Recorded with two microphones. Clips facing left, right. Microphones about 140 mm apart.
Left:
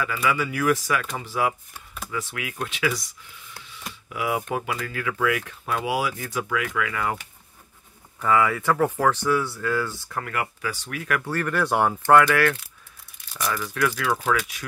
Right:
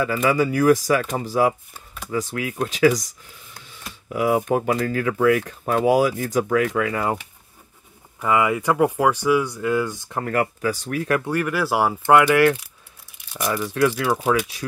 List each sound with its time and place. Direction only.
0.0 s speech: 35° right (ahead or behind)
8.2 s speech: 15° right (ahead or behind)
10.2 s speech: 40° right (ahead or behind)
11.2 s speech: 10° right (ahead or behind)
12.1 s speech: 15° right (ahead or behind)